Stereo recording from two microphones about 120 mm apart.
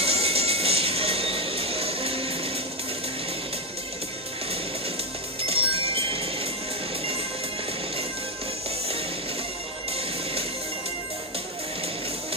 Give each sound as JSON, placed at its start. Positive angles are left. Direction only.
{"t": 0.0, "sound": "music", "side_deg": -55}
{"t": 5.4, "sound": "music", "side_deg": -50}